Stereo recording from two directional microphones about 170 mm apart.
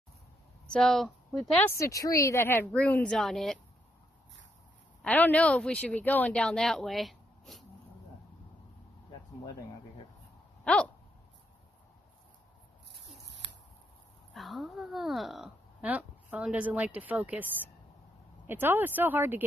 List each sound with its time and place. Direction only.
0.7 s speech: centre (ahead or behind)
1.8 s speech: 20° left (ahead or behind); by 3.5 s centre (ahead or behind)
5.0 s speech: 10° left (ahead or behind)
10.6 s a sound: 5° left (ahead or behind)
12.9 s a sound: 90° right
14.3 s a woman's voice: centre (ahead or behind)